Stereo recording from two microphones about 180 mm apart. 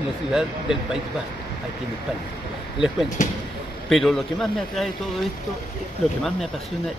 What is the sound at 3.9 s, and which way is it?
Speech, centre (ahead or behind).